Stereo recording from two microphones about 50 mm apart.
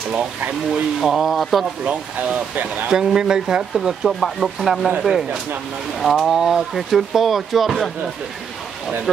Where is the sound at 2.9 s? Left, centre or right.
Centre.